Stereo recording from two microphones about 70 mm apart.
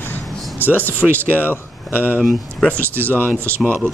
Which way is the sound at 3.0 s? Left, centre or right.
Left.